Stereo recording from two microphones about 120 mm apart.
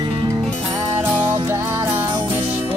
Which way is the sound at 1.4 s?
20° right (ahead or behind).